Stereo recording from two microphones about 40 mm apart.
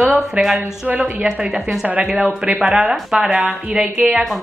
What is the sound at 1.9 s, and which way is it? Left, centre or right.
Speech, right.